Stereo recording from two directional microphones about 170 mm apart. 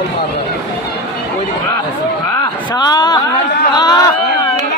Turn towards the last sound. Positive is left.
turn(degrees=25)  # may be behind; listen again after turning